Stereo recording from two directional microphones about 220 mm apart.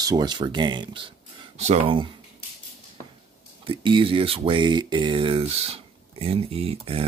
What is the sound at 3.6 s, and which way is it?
Speech, 25° right (ahead or behind).